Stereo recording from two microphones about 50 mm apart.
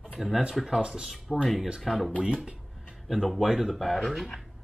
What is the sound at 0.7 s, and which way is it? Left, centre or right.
Speech, centre.